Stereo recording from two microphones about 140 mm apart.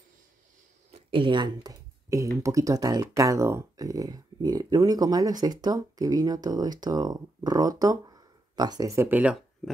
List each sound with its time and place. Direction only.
0.9 s speech: 35° right (ahead or behind); by 9.4 s 10° right (ahead or behind)